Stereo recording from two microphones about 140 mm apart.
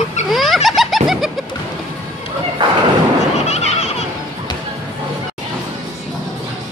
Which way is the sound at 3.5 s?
50° left (ahead or behind).